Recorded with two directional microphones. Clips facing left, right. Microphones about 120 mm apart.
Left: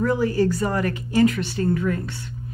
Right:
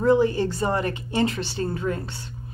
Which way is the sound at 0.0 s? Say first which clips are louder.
Right 1 dB; 25° right (ahead or behind).